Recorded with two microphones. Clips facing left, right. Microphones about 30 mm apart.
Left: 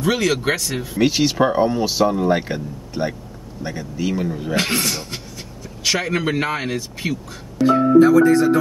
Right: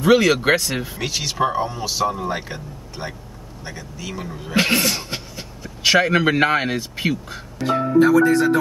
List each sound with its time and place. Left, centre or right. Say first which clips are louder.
0.0 s speech: right 4 dB; centre
0.9 s speech: left 12 dB; centre
4.6 s speech: right 4 dB; right
7.5 s speech: left 5 dB; centre